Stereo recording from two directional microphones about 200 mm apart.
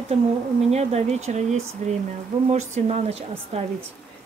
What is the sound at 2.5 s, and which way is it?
Speech, 35° right (ahead or behind).